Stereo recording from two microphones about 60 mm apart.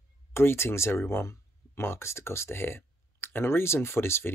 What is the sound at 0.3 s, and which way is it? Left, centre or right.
Speech, left.